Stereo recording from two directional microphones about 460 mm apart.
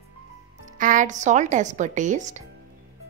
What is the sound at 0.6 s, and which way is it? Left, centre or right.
Speech, centre.